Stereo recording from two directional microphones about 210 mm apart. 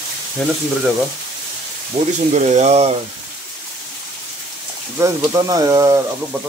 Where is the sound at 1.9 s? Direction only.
30° right (ahead or behind).